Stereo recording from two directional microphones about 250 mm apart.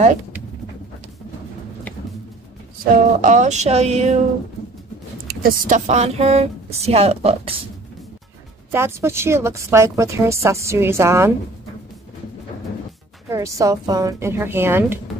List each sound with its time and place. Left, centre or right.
2.8 s a woman's voice: right
5.3 s a woman's voice: right
8.7 s a woman's voice: centre
13.3 s a woman's voice: centre